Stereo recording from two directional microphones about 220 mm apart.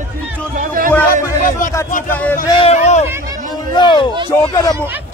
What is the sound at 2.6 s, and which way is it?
Speech, 30° left (ahead or behind).